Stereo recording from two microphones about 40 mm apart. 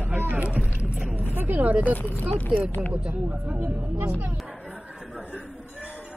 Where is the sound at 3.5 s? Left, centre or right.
Right.